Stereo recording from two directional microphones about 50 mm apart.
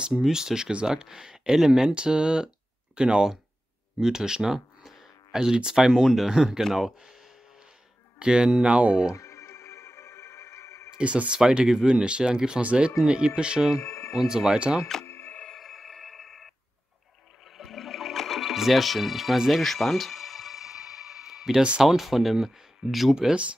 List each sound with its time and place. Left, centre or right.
0.2 s speech: centre
8.2 s speech: centre
9.1 s music: left
11.0 s speech: right
11.3 s speech: centre
13.7 s a sound: left
14.3 s speech: centre
15.0 s sonar: left
15.5 s telephone bell ringing: centre
17.6 s music: centre
21.8 s speech: centre
23.1 s speech: centre